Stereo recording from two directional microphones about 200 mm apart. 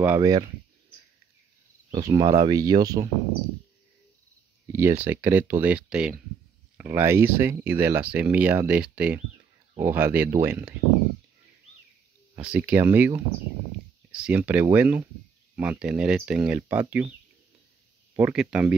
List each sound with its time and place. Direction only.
0.0 s speech: 15° right (ahead or behind)
1.9 s speech: 20° right (ahead or behind)
4.7 s speech: 10° right (ahead or behind)
12.4 s speech: 5° right (ahead or behind)
18.1 s speech: 5° right (ahead or behind)